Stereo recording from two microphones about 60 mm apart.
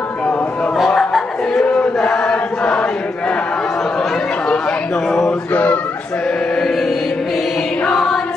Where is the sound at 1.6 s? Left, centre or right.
Centre.